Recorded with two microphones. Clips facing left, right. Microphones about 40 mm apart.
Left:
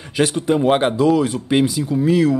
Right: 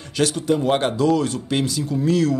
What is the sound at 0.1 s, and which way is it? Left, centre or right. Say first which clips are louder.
Speech: left 3 dB; centre.